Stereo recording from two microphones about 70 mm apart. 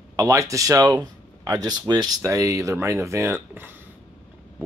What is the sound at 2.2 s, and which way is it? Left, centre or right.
Speech, right.